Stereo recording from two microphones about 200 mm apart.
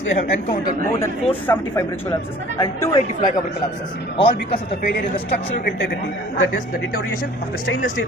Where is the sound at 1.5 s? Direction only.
15° left (ahead or behind).